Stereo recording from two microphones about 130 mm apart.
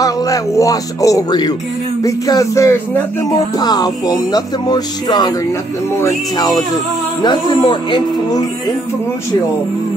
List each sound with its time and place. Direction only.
0.0 s speech: 25° left (ahead or behind)
3.5 s speech: 30° left (ahead or behind)
6.3 s speech: 30° left (ahead or behind)